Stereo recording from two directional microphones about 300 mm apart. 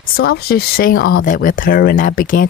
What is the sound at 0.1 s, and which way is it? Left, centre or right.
Speech, left.